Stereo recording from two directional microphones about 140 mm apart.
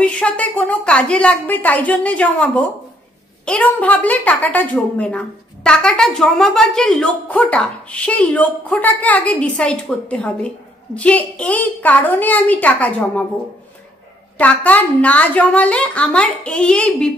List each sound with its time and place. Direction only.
0.0 s a woman's voice: 10° left (ahead or behind)
14.4 s a woman's voice: 10° left (ahead or behind)